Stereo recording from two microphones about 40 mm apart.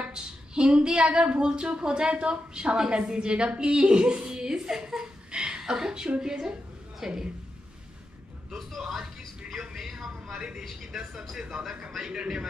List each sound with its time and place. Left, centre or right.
0.0 s a woman's voice: right; by 7.2 s centre
8.5 s a woman's voice: centre
9.5 s a sound: centre
10.3 s a man's voice: centre
10.6 s a woman's voice: centre
10.9 s a woman's voice: centre